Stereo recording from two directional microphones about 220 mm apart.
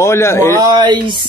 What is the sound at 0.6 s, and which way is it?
Speech, 20° right (ahead or behind).